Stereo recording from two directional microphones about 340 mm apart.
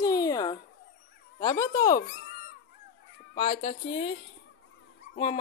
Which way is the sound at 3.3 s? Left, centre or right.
Centre.